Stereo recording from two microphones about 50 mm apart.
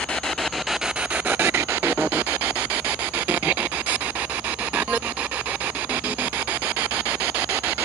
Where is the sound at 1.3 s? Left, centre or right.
Right.